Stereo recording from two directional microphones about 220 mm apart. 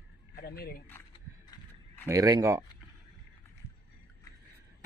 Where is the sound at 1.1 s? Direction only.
15° left (ahead or behind).